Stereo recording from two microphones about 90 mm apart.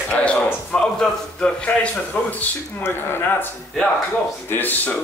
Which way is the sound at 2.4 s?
25° left (ahead or behind).